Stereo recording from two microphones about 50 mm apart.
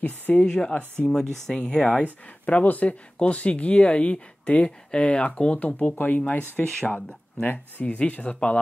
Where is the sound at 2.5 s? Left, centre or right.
Left.